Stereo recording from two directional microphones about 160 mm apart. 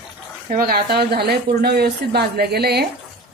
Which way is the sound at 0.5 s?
65° right (ahead or behind).